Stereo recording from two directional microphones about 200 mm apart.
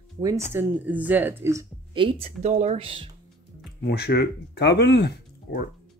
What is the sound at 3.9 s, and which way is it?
Speech, 55° left (ahead or behind).